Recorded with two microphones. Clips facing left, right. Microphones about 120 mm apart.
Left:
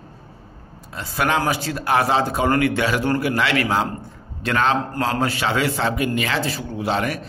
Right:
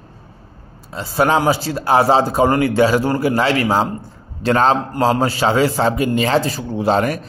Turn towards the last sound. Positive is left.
turn(degrees=-40)  # may be behind; listen again after turning